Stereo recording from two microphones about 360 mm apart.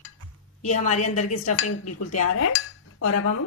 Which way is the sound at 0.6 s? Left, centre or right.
Centre.